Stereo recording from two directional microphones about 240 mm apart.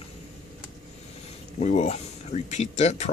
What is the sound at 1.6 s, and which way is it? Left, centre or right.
Speech, left.